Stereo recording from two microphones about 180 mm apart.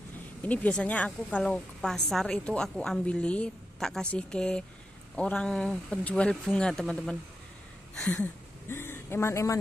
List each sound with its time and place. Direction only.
0.4 s a woman's voice: 10° left (ahead or behind)